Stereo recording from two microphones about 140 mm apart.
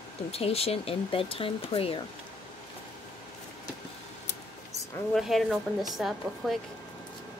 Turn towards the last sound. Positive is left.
turn(degrees=0)  # may be behind; listen again after turning